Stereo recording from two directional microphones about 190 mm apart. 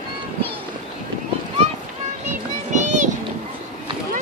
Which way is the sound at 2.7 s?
40° right (ahead or behind).